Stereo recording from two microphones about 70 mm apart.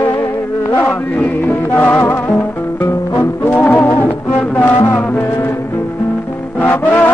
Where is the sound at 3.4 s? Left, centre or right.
Left.